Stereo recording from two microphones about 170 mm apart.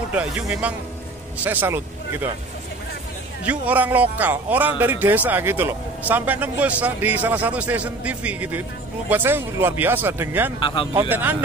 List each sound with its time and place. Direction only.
0.1 s speech: 5° right (ahead or behind)
3.4 s speech: 10° right (ahead or behind)
10.6 s speech: 30° left (ahead or behind)
10.9 s speech: 15° right (ahead or behind)